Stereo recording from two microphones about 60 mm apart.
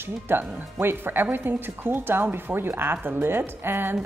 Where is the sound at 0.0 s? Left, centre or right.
Right.